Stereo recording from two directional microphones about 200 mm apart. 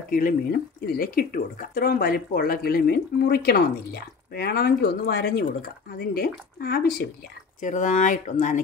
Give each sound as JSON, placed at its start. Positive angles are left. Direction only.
{"t": 0.1, "sound": "speech", "side_deg": 45}
{"t": 7.6, "sound": "speech", "side_deg": 35}